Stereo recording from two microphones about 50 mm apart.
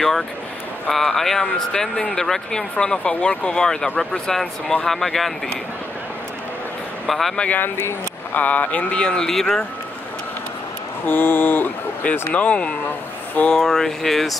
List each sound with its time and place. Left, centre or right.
0.8 s speech: centre
7.1 s speech: centre
7.3 s speech: left
7.6 s a sound: left
8.3 s speech: left; by 9.7 s centre
11.1 s a sound: left
12.4 s speech: left
13.5 s speech: centre